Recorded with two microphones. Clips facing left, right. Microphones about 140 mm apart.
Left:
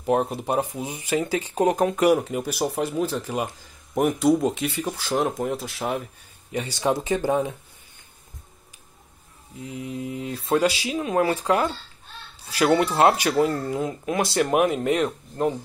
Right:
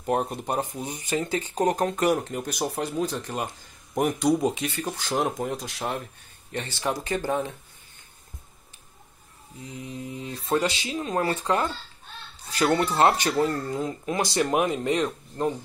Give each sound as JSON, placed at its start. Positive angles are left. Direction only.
{"t": 0.0, "sound": "speech", "side_deg": 0}
{"t": 9.6, "sound": "speech", "side_deg": 5}